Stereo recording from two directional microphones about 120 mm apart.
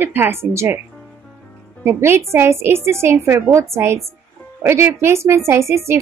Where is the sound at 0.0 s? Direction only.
20° right (ahead or behind).